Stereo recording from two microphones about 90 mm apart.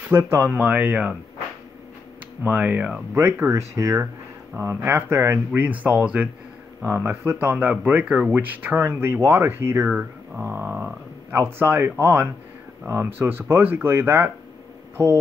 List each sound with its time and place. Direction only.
0.1 s speech: 30° right (ahead or behind)
2.4 s speech: 15° right (ahead or behind)
3.2 s speech: 30° right (ahead or behind)
5.6 s speech: 15° right (ahead or behind)
6.9 s speech: 25° right (ahead or behind)
9.8 s speech: 15° right (ahead or behind); by 15.1 s 30° right (ahead or behind)